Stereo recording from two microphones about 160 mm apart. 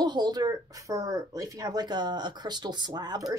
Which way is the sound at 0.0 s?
25° right (ahead or behind).